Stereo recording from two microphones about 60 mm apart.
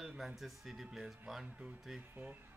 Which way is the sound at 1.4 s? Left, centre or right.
Centre.